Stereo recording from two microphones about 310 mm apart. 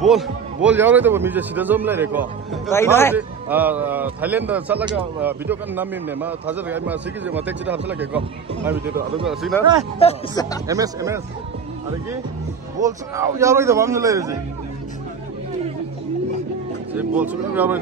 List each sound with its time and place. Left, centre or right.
0.0 s a man's voice: centre
3.2 s a man's voice: centre
9.9 s speech: centre
10.7 s a man's voice: centre
12.8 s a man's voice: centre
17.2 s a man's voice: centre